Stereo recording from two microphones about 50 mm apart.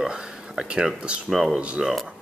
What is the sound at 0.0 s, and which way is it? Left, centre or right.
Speech, centre.